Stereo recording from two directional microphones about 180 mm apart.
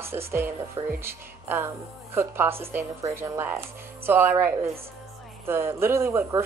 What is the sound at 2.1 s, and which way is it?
Speech, 10° right (ahead or behind).